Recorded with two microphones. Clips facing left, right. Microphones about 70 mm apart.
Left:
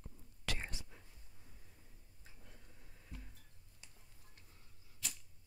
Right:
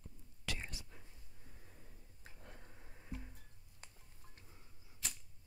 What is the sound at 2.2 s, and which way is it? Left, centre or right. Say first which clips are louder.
Tick-tock: right 5 dB; right.